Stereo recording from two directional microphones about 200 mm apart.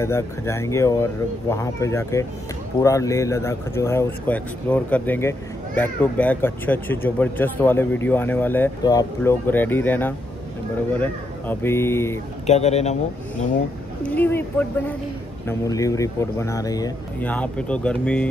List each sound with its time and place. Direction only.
0.0 s speech: 15° left (ahead or behind)
12.4 s a man's voice: 35° left (ahead or behind)
14.0 s speech: 10° left (ahead or behind)
17.2 s speech: 5° left (ahead or behind)